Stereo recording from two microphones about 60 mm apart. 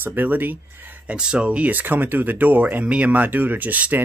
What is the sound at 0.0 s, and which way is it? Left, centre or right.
Speech, right.